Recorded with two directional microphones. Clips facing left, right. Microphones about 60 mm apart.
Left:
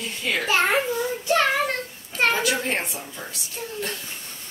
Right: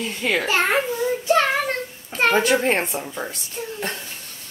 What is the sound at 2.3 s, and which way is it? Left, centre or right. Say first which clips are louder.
Speech: right 6 dB; right.